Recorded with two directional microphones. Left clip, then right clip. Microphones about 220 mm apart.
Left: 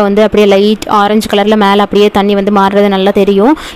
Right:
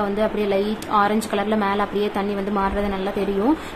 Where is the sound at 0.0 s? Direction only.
40° left (ahead or behind).